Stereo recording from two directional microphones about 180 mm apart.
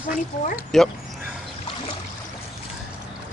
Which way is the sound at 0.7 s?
Centre (ahead or behind).